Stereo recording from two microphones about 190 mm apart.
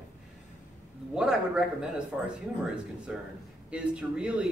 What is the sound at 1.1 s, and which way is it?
Speech, 5° right (ahead or behind).